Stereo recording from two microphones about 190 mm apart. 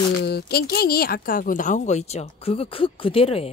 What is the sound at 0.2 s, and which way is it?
Speech, 55° left (ahead or behind).